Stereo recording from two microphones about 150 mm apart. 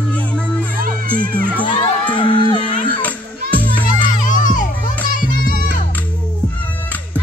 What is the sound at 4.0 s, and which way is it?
Music, 60° left (ahead or behind).